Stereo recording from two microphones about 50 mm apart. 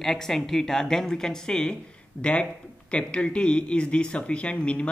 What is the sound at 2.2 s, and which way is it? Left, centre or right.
Speech, left.